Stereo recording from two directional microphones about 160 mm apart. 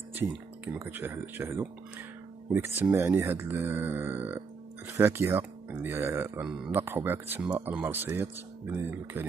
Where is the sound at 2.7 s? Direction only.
15° right (ahead or behind).